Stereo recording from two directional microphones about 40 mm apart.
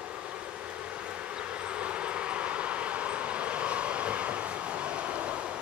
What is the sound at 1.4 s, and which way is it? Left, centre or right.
Vehicle, right.